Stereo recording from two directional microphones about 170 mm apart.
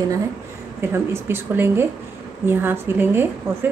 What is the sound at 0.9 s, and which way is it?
A woman's voice, 15° right (ahead or behind).